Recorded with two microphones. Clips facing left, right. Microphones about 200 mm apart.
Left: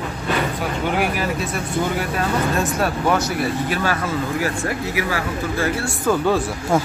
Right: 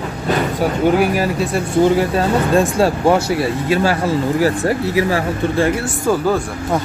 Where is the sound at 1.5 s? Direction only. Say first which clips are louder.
Right 8 dB; 30° right (ahead or behind).